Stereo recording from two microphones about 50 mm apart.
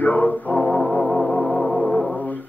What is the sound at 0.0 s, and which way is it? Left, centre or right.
Music, left.